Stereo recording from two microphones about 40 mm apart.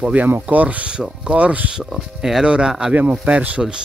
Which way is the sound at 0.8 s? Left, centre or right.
Right.